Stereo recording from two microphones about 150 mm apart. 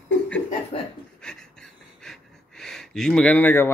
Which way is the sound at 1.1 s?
5° left (ahead or behind).